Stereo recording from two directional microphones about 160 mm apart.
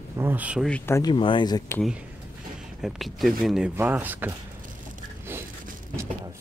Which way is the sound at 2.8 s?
Centre (ahead or behind).